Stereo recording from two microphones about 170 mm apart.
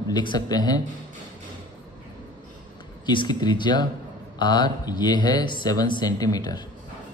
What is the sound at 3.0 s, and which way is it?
Speech, 25° left (ahead or behind).